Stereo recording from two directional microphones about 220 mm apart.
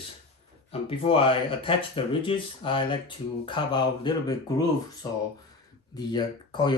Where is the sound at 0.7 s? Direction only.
25° left (ahead or behind).